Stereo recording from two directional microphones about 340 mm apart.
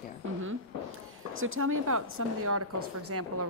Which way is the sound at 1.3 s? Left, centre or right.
Right.